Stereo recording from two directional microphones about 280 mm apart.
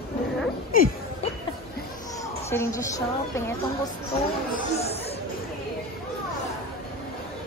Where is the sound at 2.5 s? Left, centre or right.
Centre.